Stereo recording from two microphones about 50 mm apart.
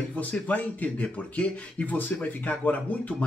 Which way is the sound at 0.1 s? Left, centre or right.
Left.